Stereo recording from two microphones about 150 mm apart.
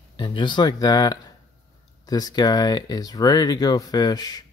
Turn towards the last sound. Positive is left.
turn(degrees=25)  # may be behind; listen again after turning